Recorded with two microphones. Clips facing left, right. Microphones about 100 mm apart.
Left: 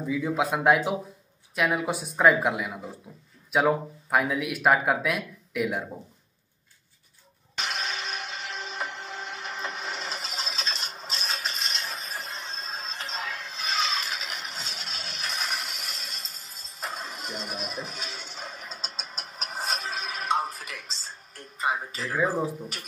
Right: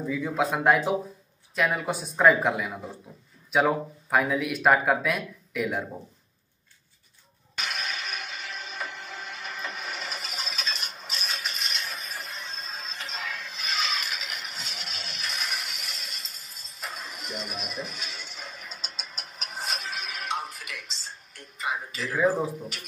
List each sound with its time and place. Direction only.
0.0 s speech: 10° left (ahead or behind)
7.5 s music: 25° left (ahead or behind)
16.8 s a sound: 30° left (ahead or behind)